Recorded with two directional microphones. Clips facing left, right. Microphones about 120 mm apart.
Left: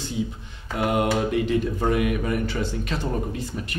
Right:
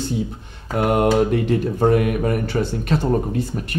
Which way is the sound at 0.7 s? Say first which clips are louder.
Right 5 dB; 45° right (ahead or behind).